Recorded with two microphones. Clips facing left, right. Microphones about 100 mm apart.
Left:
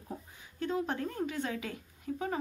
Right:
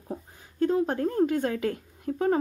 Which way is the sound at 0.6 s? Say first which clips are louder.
Right 9 dB; 40° right (ahead or behind).